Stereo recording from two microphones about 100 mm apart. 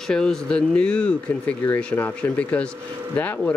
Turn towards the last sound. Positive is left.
turn(degrees=15)  # may be behind; listen again after turning